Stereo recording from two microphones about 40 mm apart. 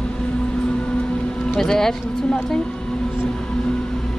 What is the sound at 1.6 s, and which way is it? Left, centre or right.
Speech, centre.